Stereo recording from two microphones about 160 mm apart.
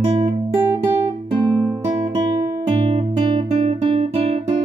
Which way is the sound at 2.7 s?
30° right (ahead or behind).